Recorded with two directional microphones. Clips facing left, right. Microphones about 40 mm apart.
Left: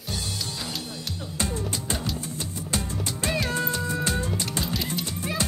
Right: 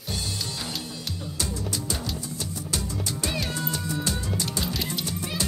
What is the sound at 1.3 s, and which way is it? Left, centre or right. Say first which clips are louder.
Music: left 3 dB; left.